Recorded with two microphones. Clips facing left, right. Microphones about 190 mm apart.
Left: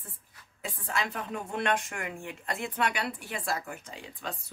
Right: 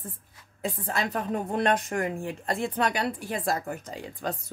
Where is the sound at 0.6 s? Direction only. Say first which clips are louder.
Right 4 dB; 35° right (ahead or behind).